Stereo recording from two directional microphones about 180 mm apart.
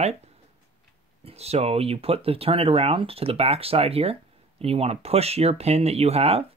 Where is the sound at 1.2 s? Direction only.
35° right (ahead or behind).